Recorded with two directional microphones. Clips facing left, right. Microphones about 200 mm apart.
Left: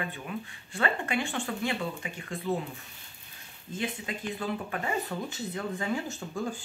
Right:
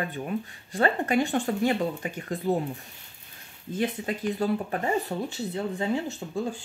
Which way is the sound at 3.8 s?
40° right (ahead or behind).